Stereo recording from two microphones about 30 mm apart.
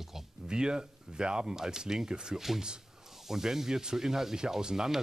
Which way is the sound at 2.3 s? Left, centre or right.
Centre.